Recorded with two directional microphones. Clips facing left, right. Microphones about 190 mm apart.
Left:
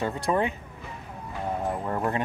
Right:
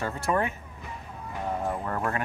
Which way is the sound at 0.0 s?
15° left (ahead or behind).